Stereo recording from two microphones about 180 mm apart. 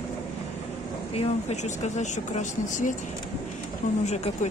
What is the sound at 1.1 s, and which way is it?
Speech, 35° left (ahead or behind).